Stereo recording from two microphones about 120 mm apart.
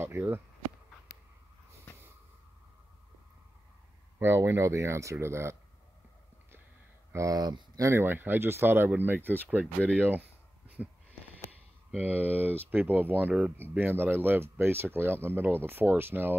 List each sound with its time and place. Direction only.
0.0 s speech: 20° right (ahead or behind)
4.2 s speech: 20° right (ahead or behind)
7.1 s speech: 25° right (ahead or behind)